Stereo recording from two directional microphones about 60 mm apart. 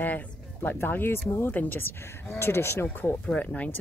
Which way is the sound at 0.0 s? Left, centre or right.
Left.